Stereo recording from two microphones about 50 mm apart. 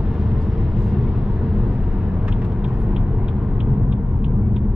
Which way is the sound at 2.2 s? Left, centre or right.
Right.